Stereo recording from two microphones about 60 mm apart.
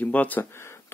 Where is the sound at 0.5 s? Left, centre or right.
Left.